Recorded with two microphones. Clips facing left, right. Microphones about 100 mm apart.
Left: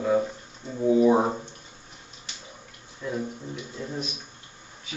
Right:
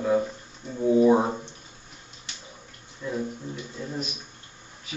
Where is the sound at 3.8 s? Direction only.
Centre (ahead or behind).